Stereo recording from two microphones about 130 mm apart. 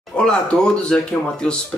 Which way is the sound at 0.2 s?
5° left (ahead or behind).